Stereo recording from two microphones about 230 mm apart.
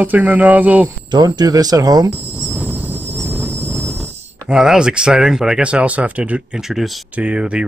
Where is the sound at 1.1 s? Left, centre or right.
Centre.